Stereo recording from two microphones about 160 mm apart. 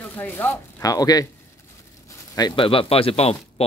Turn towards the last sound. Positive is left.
turn(degrees=40)  # may be behind; listen again after turning